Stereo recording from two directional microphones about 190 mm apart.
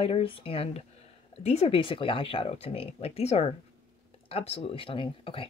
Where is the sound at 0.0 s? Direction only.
30° left (ahead or behind).